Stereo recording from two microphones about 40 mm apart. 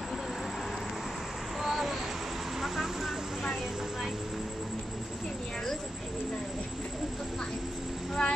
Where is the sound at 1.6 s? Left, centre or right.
Centre.